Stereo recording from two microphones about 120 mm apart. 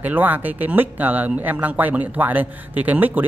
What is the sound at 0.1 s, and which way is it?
Speech, 15° right (ahead or behind).